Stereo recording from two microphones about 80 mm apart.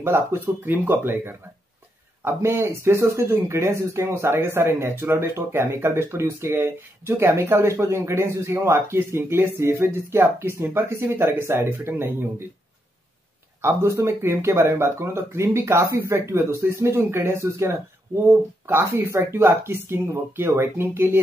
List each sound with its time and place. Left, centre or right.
0.0 s speech: right
13.6 s speech: right